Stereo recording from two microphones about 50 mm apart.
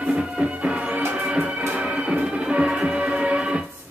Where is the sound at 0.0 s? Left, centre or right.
Centre.